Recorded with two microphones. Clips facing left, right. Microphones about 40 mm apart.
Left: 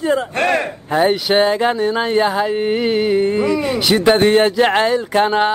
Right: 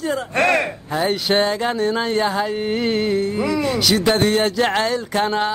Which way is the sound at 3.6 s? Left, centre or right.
Left.